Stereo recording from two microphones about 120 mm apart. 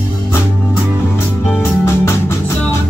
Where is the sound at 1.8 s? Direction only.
20° left (ahead or behind).